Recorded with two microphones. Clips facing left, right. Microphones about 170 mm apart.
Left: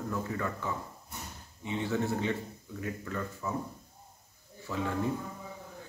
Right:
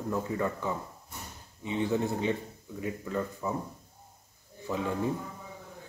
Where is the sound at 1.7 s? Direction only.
15° right (ahead or behind).